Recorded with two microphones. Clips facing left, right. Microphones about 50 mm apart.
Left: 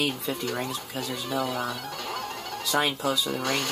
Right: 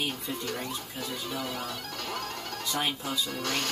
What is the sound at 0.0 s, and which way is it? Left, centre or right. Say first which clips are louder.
Speech: left 5 dB; left.